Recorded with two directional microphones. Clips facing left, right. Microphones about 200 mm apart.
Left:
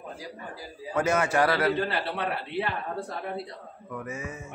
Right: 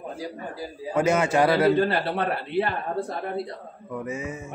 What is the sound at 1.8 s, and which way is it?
Speech, 50° right (ahead or behind).